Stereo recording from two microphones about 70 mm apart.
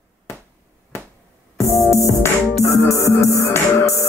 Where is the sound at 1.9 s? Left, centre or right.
Left.